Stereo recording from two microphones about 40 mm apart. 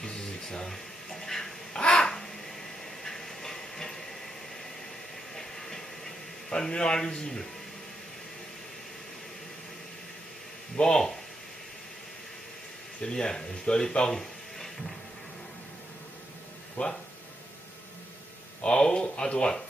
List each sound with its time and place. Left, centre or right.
0.0 s music: centre
1.7 s crow: left
3.0 s steam: centre
5.3 s a sound: centre
10.8 s speech: left
13.0 s speech: centre
16.8 s speech: left
18.6 s a sound: left